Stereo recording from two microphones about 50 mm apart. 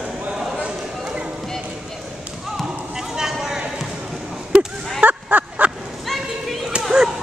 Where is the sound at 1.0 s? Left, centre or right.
Centre.